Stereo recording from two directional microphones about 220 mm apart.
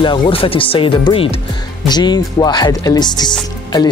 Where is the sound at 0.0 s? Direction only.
20° left (ahead or behind).